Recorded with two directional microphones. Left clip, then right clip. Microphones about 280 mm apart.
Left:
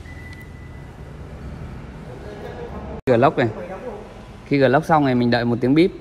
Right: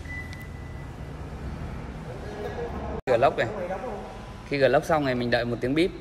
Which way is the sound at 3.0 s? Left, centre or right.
Centre.